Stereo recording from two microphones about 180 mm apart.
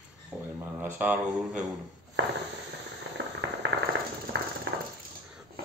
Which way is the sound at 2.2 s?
80° right.